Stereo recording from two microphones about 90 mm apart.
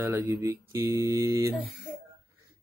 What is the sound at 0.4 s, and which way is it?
Speech, 30° right (ahead or behind).